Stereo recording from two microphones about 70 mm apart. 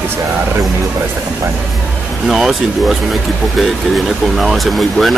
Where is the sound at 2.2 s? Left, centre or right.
Centre.